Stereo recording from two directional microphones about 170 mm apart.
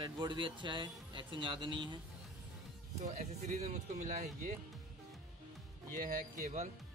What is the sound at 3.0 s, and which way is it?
Speech, 45° right (ahead or behind).